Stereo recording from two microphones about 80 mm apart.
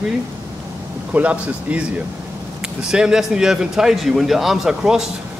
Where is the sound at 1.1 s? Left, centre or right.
Centre.